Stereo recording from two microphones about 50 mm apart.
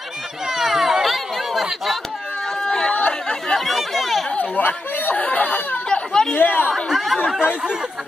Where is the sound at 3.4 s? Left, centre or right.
Centre.